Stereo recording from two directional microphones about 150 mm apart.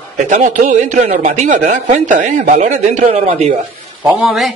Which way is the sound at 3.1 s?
40° right (ahead or behind).